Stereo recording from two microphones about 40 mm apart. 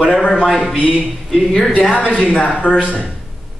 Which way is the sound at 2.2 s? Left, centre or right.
Left.